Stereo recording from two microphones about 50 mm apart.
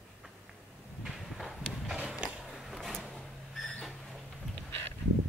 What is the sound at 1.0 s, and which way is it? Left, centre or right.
Clip-clop, centre.